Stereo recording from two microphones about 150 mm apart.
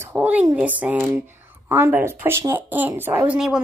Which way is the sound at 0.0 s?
10° right (ahead or behind).